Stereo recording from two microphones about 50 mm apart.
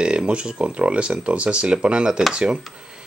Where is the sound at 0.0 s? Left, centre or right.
Centre.